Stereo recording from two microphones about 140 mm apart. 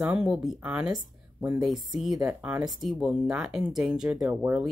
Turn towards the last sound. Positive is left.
turn(degrees=-10)  # may be behind; listen again after turning